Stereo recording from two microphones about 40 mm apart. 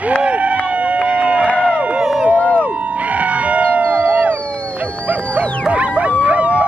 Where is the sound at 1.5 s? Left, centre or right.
Left.